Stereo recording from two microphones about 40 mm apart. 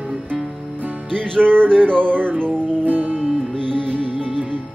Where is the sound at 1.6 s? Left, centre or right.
Left.